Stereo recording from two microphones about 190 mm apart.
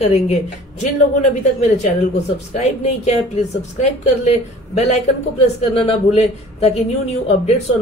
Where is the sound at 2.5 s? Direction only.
35° left (ahead or behind).